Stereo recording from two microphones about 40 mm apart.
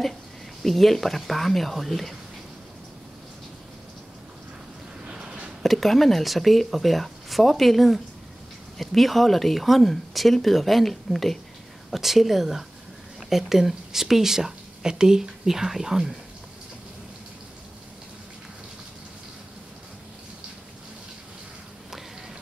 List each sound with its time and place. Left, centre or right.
0.6 s speech: centre
5.0 s a sound: right
5.6 s speech: centre